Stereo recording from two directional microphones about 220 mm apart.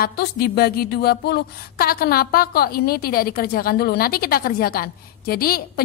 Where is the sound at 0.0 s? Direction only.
45° left (ahead or behind).